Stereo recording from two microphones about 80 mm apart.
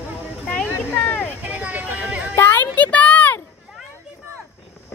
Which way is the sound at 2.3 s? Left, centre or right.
Left.